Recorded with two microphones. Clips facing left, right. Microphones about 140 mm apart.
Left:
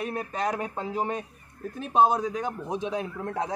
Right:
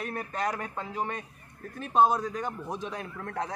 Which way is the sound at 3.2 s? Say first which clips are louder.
Left 4 dB; 25° left (ahead or behind).